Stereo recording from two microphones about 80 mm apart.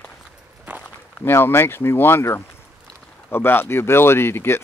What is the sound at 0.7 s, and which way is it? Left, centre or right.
Walk, centre.